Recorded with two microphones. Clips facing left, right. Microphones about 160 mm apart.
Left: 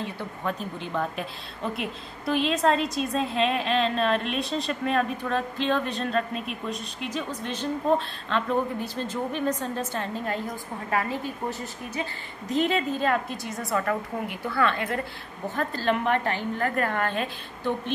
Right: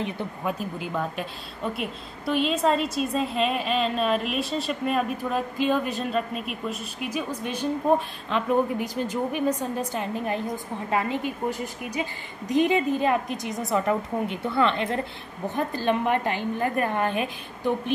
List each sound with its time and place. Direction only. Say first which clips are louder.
0.0 s a woman's voice: right 2 dB; 10° right (ahead or behind)